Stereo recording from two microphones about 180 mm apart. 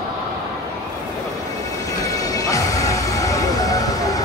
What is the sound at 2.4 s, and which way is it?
Music, 20° left (ahead or behind).